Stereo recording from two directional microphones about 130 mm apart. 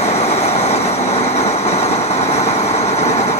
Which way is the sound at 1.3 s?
55° left (ahead or behind).